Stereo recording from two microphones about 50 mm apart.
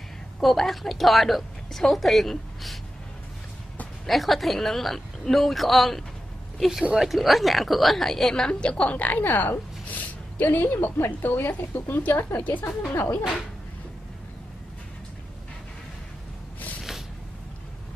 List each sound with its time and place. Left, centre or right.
0.4 s a woman's voice: centre
4.0 s a woman's voice: centre; by 8.9 s left
8.9 s a woman's voice: left
12.6 s speech: left